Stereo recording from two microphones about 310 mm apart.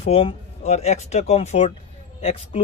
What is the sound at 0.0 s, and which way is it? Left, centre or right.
A man's voice, centre.